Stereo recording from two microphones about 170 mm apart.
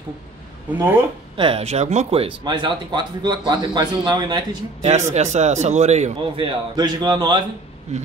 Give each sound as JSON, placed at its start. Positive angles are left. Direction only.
{"t": 1.3, "sound": "speech", "side_deg": -30}
{"t": 4.8, "sound": "a man's voice", "side_deg": -40}
{"t": 7.9, "sound": "a man's voice", "side_deg": -40}